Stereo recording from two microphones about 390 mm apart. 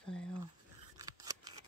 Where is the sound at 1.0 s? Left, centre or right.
Centre.